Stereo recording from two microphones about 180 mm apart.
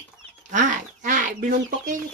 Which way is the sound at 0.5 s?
45° right (ahead or behind).